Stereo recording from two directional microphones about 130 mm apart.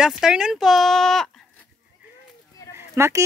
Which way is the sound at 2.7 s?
20° right (ahead or behind).